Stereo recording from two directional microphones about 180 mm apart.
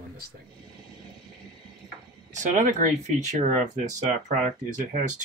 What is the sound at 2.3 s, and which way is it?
Speech, 45° right (ahead or behind).